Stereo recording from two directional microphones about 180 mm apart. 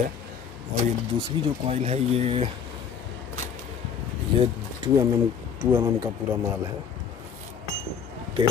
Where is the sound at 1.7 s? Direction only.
35° right (ahead or behind).